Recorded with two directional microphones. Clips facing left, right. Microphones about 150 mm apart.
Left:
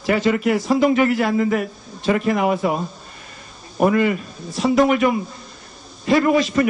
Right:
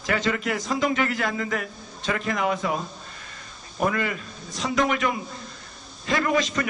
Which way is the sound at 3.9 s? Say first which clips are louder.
Left 10 dB; 10° left (ahead or behind).